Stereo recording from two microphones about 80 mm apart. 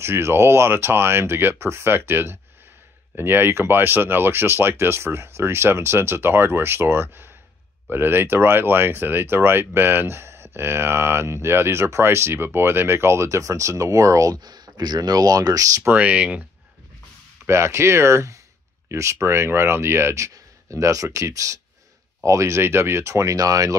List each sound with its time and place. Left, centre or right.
0.0 s speech: right
15.8 s speech: centre
17.5 s speech: right